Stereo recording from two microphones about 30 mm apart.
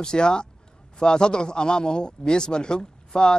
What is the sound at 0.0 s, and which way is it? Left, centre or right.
A man's voice, left.